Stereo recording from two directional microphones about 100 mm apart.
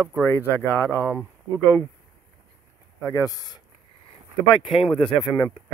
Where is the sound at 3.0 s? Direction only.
35° left (ahead or behind).